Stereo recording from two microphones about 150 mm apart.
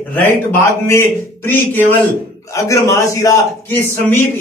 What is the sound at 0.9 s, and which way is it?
A man's voice, 15° left (ahead or behind).